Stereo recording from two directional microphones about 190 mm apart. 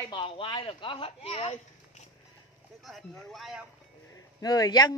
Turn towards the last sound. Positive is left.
turn(degrees=20)  # may be behind; listen again after turning